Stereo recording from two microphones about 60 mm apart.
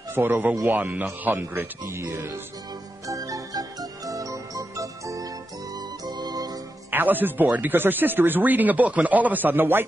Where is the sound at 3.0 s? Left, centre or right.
Right.